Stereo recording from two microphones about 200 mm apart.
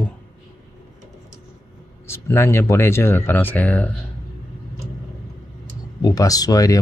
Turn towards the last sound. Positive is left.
turn(degrees=20)  # may be behind; listen again after turning